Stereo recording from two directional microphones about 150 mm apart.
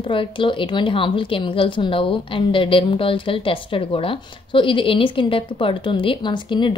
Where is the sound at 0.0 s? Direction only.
35° left (ahead or behind).